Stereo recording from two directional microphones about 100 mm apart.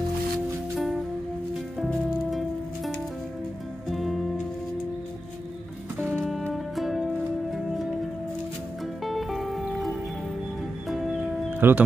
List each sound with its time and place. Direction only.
3.9 s music: centre (ahead or behind)
6.5 s music: centre (ahead or behind)
9.0 s music: centre (ahead or behind)
11.6 s speech: 20° right (ahead or behind)